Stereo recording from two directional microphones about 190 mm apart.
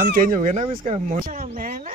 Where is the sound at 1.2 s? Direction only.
45° right (ahead or behind).